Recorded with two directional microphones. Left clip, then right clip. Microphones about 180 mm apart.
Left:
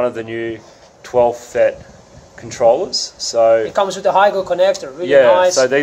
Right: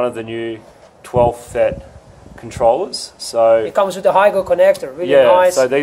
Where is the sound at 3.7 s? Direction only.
30° right (ahead or behind).